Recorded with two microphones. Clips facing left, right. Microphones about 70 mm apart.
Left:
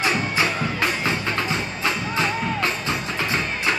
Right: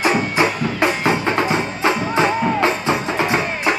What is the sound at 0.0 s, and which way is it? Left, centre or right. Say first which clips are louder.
Music: right 5 dB; right.